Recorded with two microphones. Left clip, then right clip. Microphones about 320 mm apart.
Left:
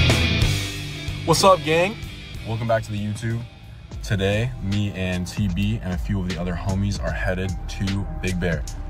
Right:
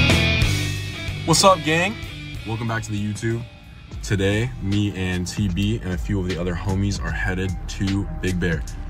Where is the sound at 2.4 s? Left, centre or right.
Centre.